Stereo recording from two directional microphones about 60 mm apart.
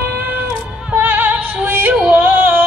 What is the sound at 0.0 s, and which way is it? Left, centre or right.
Music, right.